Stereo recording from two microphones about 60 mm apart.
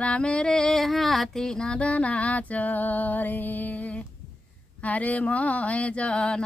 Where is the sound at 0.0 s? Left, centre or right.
Centre.